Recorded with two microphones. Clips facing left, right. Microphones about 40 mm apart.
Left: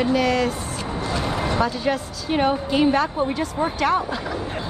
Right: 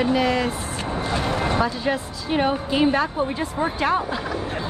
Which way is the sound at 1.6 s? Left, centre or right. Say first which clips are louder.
Left 1 dB; centre.